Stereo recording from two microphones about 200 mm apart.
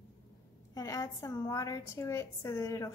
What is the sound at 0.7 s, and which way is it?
A woman's voice, 15° left (ahead or behind).